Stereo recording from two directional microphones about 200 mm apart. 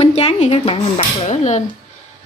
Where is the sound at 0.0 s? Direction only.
30° left (ahead or behind).